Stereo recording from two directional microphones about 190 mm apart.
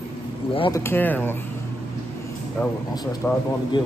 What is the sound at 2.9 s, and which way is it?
Speech, 20° left (ahead or behind).